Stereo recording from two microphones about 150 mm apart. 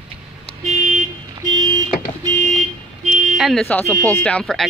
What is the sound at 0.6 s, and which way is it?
Vehicle, 55° right (ahead or behind).